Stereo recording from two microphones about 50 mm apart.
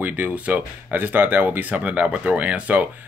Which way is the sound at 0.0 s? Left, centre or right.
Right.